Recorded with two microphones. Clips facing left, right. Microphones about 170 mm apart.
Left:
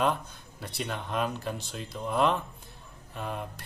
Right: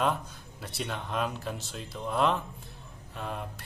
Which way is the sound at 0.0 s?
Centre (ahead or behind).